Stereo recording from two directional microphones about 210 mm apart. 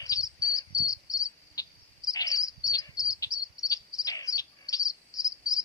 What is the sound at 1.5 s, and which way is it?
Cricket, 15° left (ahead or behind).